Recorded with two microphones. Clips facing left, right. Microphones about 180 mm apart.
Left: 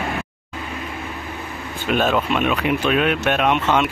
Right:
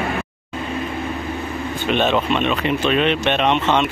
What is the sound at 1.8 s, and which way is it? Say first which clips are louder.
Speech: even; 5° left (ahead or behind).